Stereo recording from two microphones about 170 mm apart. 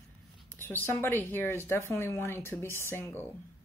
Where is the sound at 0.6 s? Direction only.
15° left (ahead or behind).